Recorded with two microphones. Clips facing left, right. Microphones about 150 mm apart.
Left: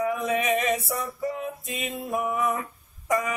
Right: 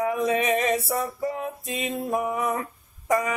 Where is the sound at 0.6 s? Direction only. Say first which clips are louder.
Right 2 dB; 30° right (ahead or behind).